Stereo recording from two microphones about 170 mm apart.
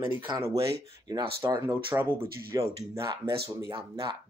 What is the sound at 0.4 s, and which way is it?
Speech, 20° right (ahead or behind).